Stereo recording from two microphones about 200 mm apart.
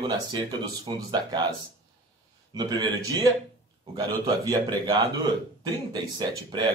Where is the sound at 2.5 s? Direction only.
20° right (ahead or behind).